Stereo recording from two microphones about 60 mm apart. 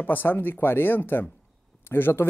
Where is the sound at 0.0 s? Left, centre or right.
Left.